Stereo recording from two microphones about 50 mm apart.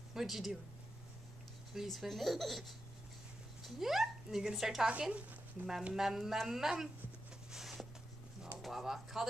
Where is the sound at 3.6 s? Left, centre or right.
Centre.